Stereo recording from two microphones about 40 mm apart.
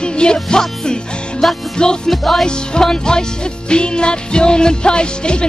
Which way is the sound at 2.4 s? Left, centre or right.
Left.